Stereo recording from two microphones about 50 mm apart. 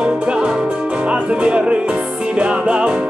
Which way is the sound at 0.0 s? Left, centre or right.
Right.